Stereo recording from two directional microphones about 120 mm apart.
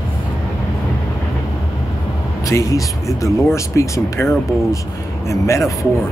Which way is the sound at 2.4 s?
30° left (ahead or behind).